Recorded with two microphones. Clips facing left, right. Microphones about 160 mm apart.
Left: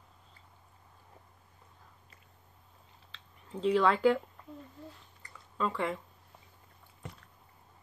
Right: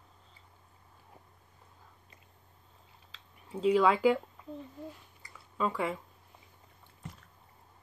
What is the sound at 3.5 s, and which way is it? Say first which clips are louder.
Speech: right 2 dB; 5° right (ahead or behind).